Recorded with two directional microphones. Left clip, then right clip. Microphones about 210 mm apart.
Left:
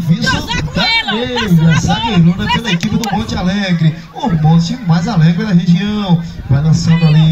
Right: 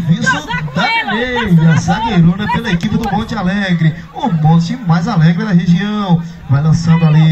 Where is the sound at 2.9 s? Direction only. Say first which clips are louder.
Even; 30° left (ahead or behind).